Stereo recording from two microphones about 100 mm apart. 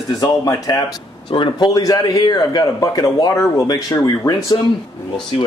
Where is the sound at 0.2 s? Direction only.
40° left (ahead or behind).